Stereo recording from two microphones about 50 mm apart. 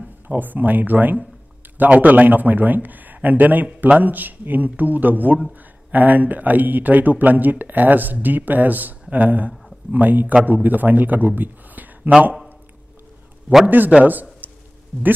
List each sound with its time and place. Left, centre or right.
0.3 s a man's voice: right
13.7 s speech: right
14.4 s a sound: right